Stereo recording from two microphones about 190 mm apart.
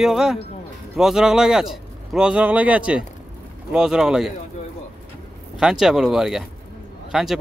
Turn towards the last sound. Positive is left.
turn(degrees=0)  # may be behind; listen again after turning